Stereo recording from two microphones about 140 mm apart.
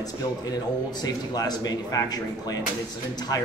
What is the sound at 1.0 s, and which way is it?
Speech, 30° left (ahead or behind).